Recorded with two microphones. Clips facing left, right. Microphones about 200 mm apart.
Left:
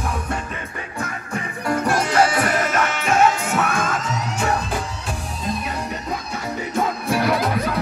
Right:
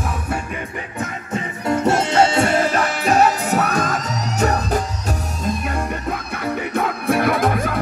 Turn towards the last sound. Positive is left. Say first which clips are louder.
# right 2 dB
turn(degrees=-50)  # may be behind; listen again after turning